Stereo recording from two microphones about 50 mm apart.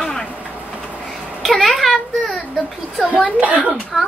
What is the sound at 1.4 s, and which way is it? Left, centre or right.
Speech, centre.